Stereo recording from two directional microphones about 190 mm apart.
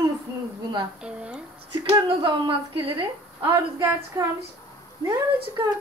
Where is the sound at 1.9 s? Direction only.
25° right (ahead or behind).